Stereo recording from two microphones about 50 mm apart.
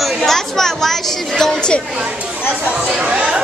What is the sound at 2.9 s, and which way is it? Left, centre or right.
Speech, right.